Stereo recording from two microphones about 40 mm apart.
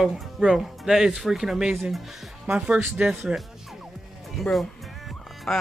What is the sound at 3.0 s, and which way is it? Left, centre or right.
Speech, right.